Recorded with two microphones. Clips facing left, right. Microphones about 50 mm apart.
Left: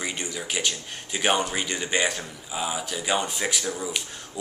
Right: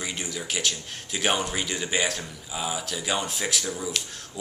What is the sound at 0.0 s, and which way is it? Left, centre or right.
Speech, centre.